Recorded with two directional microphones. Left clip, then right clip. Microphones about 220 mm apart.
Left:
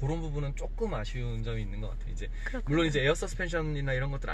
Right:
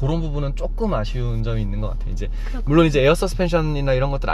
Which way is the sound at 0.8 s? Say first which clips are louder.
Right 10 dB; 45° right (ahead or behind).